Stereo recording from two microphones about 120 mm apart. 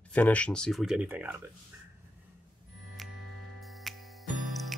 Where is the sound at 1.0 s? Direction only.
15° right (ahead or behind).